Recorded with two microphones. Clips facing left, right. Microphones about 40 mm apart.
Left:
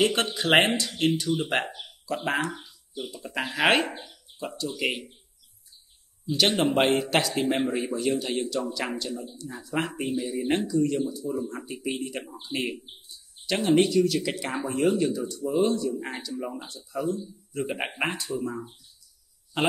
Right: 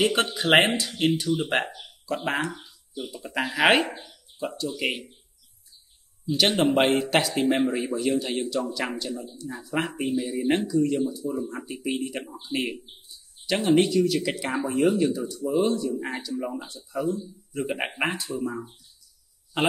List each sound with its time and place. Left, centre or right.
0.0 s speech: centre
3.9 s speech: left
4.4 s speech: centre
6.3 s speech: centre